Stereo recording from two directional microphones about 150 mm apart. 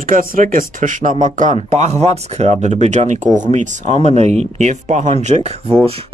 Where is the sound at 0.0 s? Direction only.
65° right (ahead or behind).